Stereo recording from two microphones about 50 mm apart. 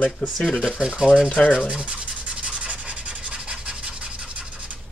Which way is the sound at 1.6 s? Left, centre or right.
Right.